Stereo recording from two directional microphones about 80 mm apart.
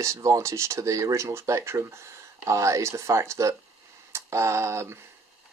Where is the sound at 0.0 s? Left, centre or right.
Right.